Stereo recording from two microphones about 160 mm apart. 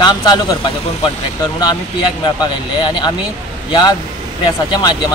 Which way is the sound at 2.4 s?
25° left (ahead or behind).